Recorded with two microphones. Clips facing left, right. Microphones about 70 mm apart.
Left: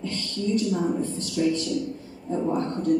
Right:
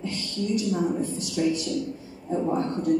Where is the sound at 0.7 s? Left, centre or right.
Centre.